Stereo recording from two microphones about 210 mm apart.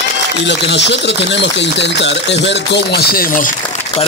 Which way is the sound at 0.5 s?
55° left (ahead or behind).